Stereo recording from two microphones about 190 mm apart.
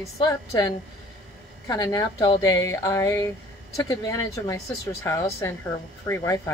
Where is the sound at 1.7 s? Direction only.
20° left (ahead or behind).